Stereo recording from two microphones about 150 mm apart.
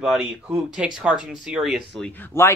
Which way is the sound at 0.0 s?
5° right (ahead or behind).